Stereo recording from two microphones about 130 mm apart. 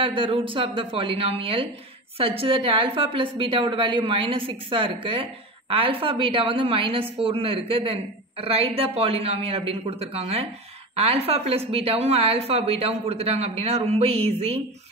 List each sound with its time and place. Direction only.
0.0 s a woman's voice: 40° right (ahead or behind)